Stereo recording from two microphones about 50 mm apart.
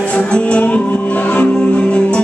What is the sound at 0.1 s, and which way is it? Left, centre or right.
Music, left.